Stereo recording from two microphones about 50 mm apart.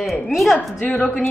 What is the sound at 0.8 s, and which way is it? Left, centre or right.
Speech, left.